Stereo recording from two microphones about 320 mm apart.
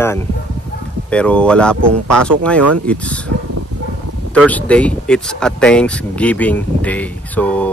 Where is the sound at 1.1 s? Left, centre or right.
Centre.